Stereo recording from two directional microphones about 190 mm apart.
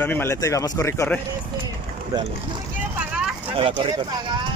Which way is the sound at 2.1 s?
20° right (ahead or behind).